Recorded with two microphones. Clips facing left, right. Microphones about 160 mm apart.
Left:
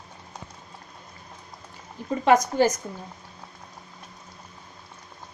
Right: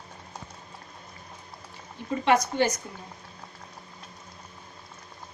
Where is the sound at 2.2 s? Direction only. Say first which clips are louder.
Left 4 dB; 45° left (ahead or behind).